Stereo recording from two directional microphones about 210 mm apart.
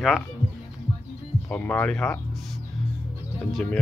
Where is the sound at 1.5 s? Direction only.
5° left (ahead or behind).